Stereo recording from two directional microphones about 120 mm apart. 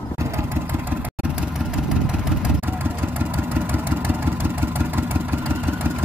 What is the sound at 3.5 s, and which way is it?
Vehicle, 15° right (ahead or behind).